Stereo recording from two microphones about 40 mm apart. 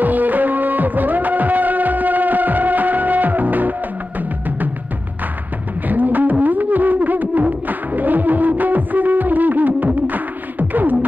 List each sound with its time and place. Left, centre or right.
0.0 s music: right
5.9 s music: right